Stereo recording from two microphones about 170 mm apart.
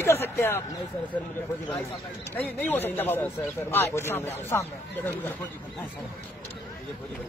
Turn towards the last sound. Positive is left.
turn(degrees=10)  # may be behind; listen again after turning